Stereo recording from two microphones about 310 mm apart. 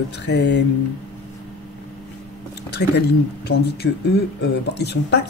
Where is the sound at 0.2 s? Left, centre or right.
Left.